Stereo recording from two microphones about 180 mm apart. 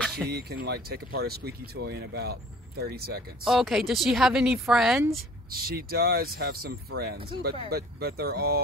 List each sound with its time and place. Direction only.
0.0 s a sound: 5° left (ahead or behind)
0.3 s speech: 60° right (ahead or behind)
3.4 s a woman's voice: centre (ahead or behind)
5.5 s speech: 55° right (ahead or behind)